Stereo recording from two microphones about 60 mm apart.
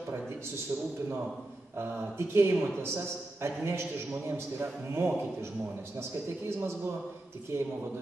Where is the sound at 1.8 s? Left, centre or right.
Right.